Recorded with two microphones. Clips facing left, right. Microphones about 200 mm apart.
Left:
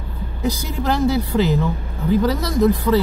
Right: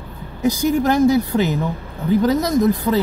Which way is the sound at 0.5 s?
15° right (ahead or behind).